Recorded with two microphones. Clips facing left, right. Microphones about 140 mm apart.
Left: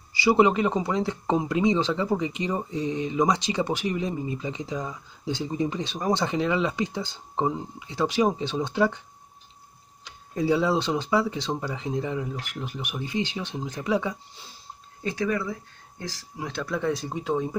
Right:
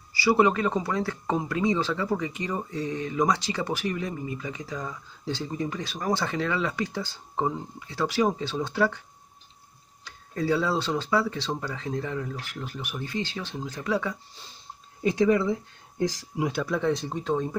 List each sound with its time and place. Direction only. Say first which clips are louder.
0.1 s speech: left 2 dB; 20° left (ahead or behind)
10.0 s speech: left 2 dB; 15° left (ahead or behind)
15.0 s speech: right 5 dB; 20° right (ahead or behind); by 17.6 s 10° left (ahead or behind)